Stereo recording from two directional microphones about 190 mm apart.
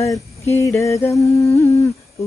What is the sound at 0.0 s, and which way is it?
Speech, 15° left (ahead or behind).